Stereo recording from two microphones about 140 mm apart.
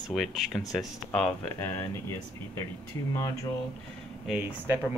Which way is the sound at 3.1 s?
20° left (ahead or behind).